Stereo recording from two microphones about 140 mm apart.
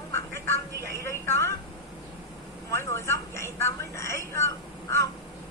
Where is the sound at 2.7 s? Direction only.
20° left (ahead or behind).